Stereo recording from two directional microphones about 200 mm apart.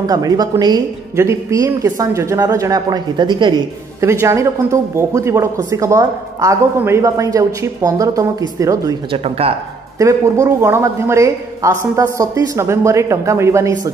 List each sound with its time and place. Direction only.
0.0 s a woman's voice: 20° right (ahead or behind)
9.4 s speech: 30° right (ahead or behind)
9.9 s a woman's voice: 15° right (ahead or behind)